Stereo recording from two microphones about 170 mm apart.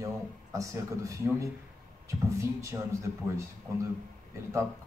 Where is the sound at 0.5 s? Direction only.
20° right (ahead or behind).